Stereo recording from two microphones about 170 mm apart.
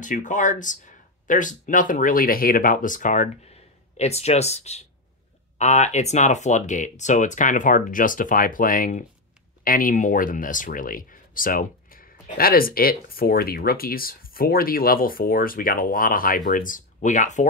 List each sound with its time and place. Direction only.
0.0 s speech: 50° left (ahead or behind)
3.9 s speech: 40° left (ahead or behind)